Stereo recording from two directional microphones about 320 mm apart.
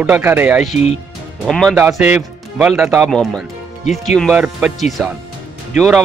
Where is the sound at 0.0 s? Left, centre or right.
Centre.